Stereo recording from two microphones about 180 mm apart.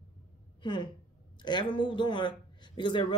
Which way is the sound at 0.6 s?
25° left (ahead or behind).